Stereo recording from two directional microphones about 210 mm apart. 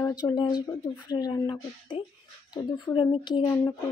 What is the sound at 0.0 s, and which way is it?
Speech, 20° left (ahead or behind).